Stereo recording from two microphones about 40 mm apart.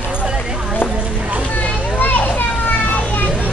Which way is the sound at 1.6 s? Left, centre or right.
Left.